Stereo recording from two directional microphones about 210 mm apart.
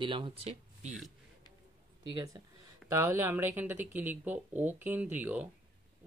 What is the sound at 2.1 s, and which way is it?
Speech, 20° right (ahead or behind).